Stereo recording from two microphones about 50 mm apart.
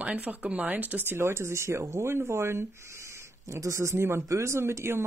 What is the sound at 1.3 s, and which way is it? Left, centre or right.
Speech, right.